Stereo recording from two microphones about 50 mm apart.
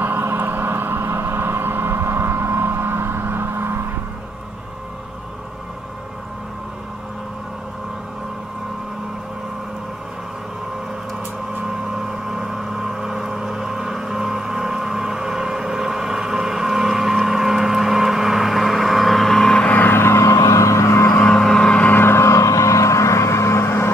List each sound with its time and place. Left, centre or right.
0.0 s vehicle: right
11.6 s vehicle: centre
19.6 s vehicle: left
19.9 s vehicle: left
21.2 s vehicle: centre
21.9 s vehicle: left